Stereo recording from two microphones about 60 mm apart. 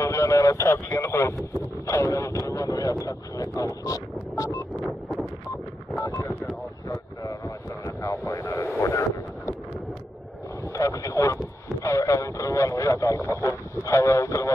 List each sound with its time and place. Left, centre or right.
0.0 s speech: left
1.4 s vehicle: left
5.9 s a sound: left
6.9 s a sound: left
8.3 s radio: left
10.7 s vehicle: left
11.8 s radio: left